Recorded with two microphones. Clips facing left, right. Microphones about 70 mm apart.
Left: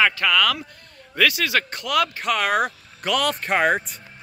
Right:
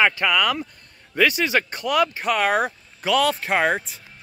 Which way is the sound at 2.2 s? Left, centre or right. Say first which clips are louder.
Right 1 dB; centre.